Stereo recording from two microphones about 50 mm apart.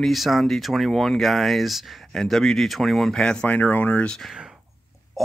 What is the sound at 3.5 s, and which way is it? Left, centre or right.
Speech, left.